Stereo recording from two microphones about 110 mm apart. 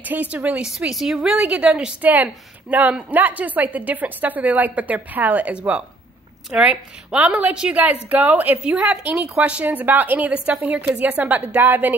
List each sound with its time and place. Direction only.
0.0 s a woman's voice: 15° right (ahead or behind)